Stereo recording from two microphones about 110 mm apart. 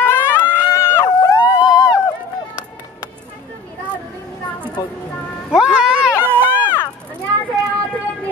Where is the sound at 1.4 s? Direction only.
45° left (ahead or behind).